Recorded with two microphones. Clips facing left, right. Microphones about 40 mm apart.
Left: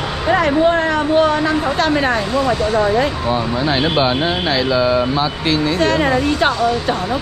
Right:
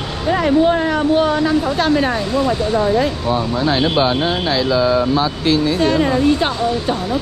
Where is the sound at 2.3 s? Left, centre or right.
Left.